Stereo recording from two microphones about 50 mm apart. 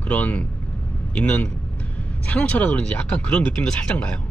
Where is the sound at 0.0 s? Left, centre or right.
Left.